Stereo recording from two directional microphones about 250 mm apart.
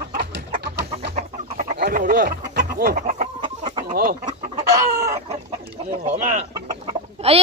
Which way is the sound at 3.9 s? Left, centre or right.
Right.